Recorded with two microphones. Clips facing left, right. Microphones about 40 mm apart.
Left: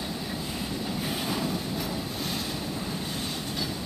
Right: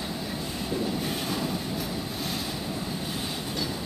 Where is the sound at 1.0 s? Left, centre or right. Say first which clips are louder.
Even; centre.